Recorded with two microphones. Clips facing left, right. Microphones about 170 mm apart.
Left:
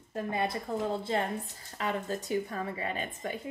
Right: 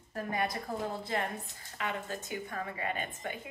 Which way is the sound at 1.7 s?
35° left (ahead or behind).